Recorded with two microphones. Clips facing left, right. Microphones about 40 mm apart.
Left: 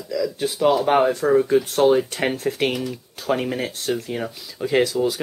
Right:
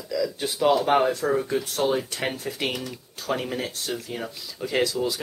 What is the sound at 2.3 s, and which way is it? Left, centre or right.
Speech, left.